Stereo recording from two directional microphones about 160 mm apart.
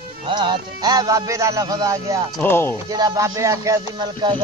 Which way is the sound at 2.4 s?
15° left (ahead or behind).